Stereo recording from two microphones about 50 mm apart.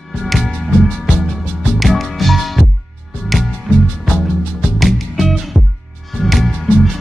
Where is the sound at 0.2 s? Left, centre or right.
Centre.